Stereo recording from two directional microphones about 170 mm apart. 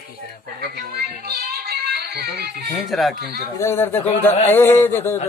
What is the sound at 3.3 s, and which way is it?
Speech, 15° left (ahead or behind).